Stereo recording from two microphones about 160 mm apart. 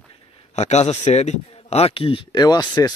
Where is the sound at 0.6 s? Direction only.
45° left (ahead or behind).